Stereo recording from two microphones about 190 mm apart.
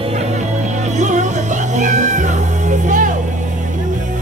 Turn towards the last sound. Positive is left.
turn(degrees=-40)  # may be behind; listen again after turning